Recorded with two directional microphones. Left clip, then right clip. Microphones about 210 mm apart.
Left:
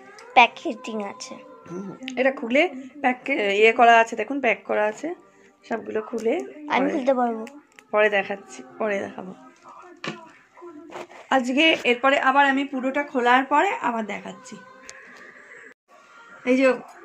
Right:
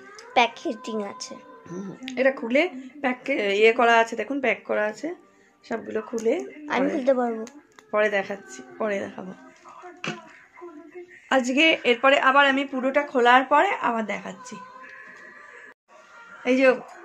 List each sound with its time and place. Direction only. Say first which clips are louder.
0.3 s speech: left 5 dB; 10° right (ahead or behind)
1.7 s a woman's voice: left 1 dB; 20° right (ahead or behind)
11.2 s speech: left 1 dB; 25° right (ahead or behind)
12.4 s speech: even; 30° right (ahead or behind)
16.4 s speech: even; 10° right (ahead or behind)